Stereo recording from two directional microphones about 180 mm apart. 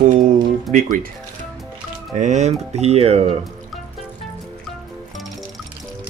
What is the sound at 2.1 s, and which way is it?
Speech, 40° right (ahead or behind).